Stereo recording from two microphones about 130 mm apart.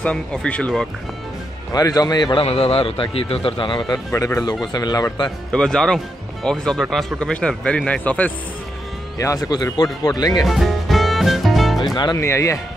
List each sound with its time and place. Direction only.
0.0 s speech: 10° left (ahead or behind)
1.7 s speech: 30° left (ahead or behind)
2.4 s speech: 45° left (ahead or behind); by 5.3 s 30° left (ahead or behind)
5.5 s speech: 5° left (ahead or behind)
9.2 s speech: 25° left (ahead or behind)
10.4 s music: centre (ahead or behind)
11.8 s speech: 35° left (ahead or behind)
12.2 s speech: 20° left (ahead or behind)